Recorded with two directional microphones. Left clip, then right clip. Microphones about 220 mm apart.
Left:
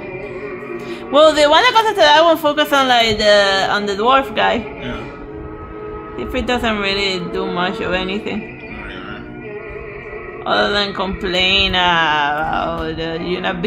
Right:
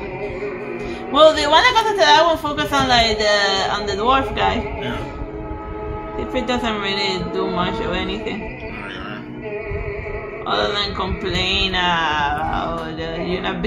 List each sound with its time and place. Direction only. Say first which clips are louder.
1.1 s a woman's voice: left 2 dB; 55° left (ahead or behind)
6.3 s a woman's voice: left 3 dB; 55° left (ahead or behind)
10.4 s a woman's voice: left 4 dB; 55° left (ahead or behind)